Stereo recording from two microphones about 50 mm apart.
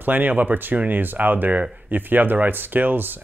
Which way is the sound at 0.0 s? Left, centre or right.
Right.